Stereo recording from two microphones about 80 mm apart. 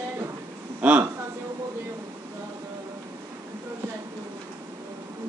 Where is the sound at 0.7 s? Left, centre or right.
Centre.